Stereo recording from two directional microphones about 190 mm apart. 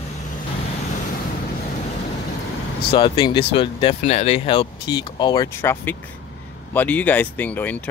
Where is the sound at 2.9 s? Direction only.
25° left (ahead or behind).